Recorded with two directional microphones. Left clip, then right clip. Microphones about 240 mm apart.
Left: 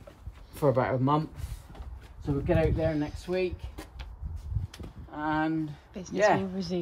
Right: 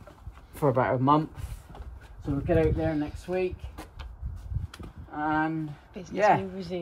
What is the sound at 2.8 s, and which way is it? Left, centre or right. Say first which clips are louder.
Speech: even; centre.